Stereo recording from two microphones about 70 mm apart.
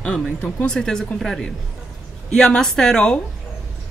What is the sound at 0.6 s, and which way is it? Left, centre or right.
A woman's voice, centre.